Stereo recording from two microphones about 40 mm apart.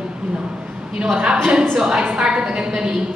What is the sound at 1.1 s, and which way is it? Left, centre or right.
A woman's voice, right.